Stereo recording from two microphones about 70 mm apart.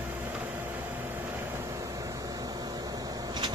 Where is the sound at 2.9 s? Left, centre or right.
Right.